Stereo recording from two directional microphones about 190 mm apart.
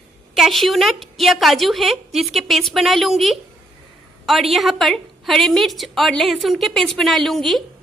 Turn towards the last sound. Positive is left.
turn(degrees=0)  # may be behind; listen again after turning